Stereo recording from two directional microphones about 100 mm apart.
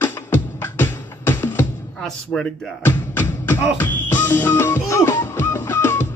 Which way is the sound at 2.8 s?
20° left (ahead or behind).